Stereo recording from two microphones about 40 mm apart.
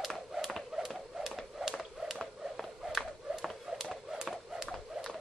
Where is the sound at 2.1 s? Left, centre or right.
Centre.